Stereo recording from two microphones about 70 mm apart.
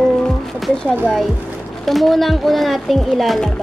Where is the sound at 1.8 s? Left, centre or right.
Centre.